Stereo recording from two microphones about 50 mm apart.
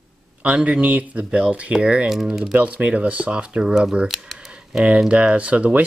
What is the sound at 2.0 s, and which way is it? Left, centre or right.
Speech, centre.